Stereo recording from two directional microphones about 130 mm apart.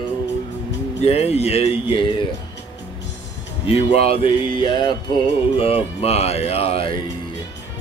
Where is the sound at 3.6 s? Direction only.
50° left (ahead or behind).